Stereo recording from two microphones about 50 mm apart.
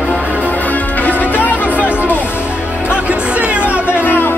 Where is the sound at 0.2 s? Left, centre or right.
Right.